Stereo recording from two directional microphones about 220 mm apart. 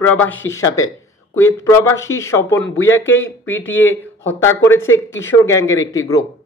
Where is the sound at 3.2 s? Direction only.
65° left (ahead or behind).